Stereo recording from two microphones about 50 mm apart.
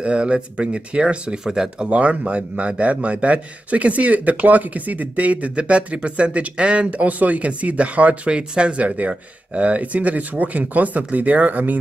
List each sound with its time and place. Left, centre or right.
0.0 s a man's voice: right
1.9 s a man's voice: right